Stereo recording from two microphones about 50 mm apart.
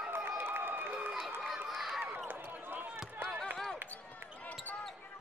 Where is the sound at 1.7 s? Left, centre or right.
Centre.